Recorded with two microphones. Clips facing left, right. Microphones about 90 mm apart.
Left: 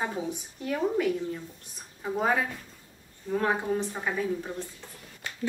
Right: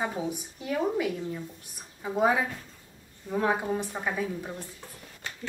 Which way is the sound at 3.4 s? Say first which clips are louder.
Even; 10° right (ahead or behind).